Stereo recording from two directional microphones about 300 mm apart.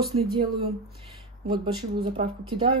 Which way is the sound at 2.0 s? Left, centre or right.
Centre.